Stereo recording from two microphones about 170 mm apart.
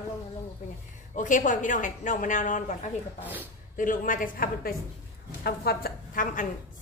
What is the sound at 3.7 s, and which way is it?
A woman's voice, 50° left (ahead or behind).